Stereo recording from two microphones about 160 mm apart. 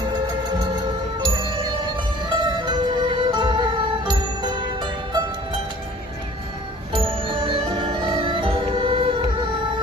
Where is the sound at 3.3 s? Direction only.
25° right (ahead or behind).